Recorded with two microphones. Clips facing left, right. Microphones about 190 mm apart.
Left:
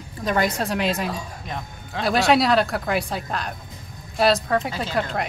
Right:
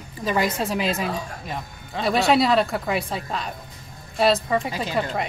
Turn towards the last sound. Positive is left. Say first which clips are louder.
# even
turn(degrees=0)  # may be behind; listen again after turning